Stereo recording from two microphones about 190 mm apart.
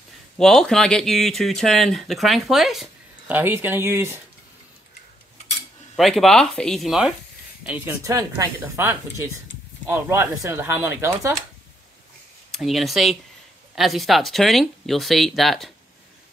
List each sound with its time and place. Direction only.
0.4 s speech: 5° left (ahead or behind); by 4.2 s 15° right (ahead or behind)
5.9 s speech: centre (ahead or behind)
12.4 s speech: centre (ahead or behind)